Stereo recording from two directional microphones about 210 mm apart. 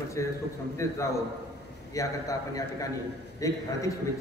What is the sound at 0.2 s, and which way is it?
A man's voice, 15° left (ahead or behind).